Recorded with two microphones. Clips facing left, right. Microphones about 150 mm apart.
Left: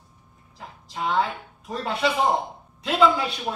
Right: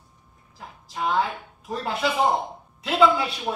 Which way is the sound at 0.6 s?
Centre (ahead or behind).